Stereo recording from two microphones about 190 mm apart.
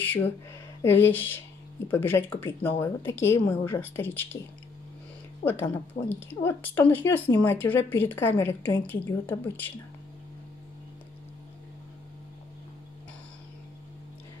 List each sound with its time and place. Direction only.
0.0 s a sound: 10° left (ahead or behind)
0.8 s a woman's voice: 10° left (ahead or behind)
5.4 s a woman's voice: 10° left (ahead or behind)